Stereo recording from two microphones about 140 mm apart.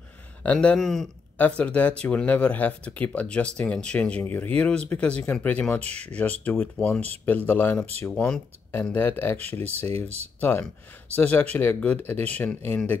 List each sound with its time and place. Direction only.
0.4 s speech: 10° left (ahead or behind)
9.7 s speech: 45° right (ahead or behind)
10.4 s speech: 10° left (ahead or behind)